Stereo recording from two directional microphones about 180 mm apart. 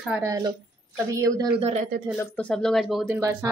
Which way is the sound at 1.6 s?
40° right (ahead or behind).